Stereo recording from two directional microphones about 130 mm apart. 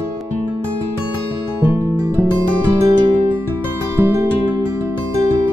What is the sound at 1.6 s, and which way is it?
Music, 15° right (ahead or behind).